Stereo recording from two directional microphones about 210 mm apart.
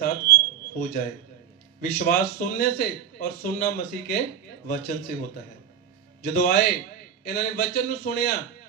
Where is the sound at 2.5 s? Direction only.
45° left (ahead or behind).